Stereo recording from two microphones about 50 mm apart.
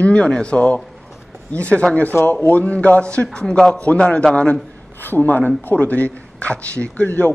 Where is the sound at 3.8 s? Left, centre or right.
Left.